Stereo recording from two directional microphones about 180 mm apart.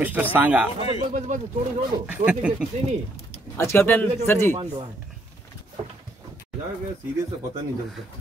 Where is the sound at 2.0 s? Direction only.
5° right (ahead or behind).